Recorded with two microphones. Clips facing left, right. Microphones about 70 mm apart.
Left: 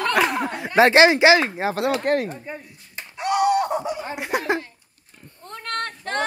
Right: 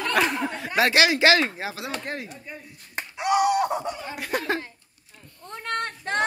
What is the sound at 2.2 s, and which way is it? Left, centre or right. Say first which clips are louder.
Speech: left 8 dB; left.